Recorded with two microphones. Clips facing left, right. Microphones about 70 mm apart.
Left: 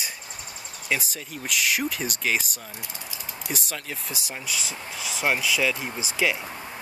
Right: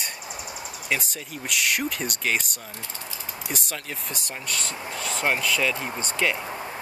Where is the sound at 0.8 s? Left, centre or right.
Centre.